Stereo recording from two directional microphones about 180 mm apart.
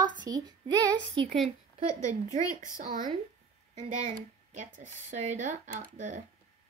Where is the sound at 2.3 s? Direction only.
45° right (ahead or behind).